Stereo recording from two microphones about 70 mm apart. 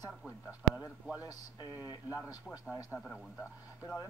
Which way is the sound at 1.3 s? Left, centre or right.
Left.